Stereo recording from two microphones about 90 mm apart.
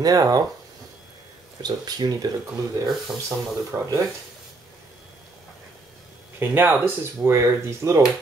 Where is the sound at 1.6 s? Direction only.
50° right (ahead or behind).